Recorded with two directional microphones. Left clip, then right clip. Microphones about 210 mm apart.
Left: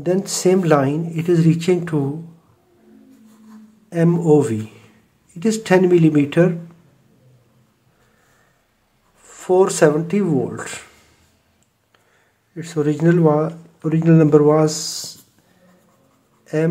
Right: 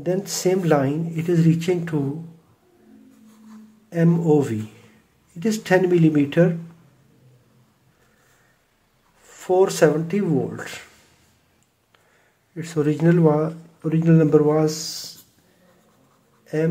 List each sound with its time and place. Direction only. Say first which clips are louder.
0.0 s speech: left 4 dB; 15° left (ahead or behind)
3.9 s speech: left 4 dB; 15° left (ahead or behind)
9.2 s speech: left 3 dB; 15° left (ahead or behind)
12.5 s speech: left 2 dB; centre (ahead or behind); by 15.1 s 20° left (ahead or behind)
16.5 s speech: left 3 dB; 20° left (ahead or behind)